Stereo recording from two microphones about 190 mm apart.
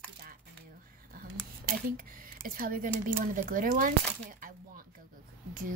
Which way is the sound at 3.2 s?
45° right (ahead or behind).